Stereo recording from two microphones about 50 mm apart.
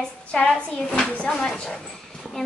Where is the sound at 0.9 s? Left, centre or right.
Left.